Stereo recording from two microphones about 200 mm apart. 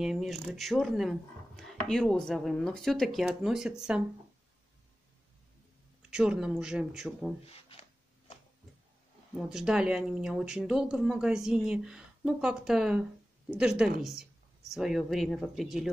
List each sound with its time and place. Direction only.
0.0 s speech: centre (ahead or behind)
6.0 s speech: 5° right (ahead or behind)
9.5 s speech: 5° right (ahead or behind)